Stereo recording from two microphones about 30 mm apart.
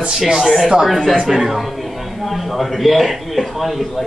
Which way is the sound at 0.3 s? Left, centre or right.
Centre.